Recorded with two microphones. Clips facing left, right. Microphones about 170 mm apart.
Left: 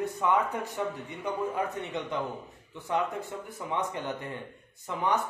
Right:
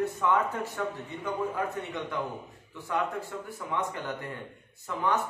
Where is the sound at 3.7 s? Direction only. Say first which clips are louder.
Left 1 dB; 20° left (ahead or behind).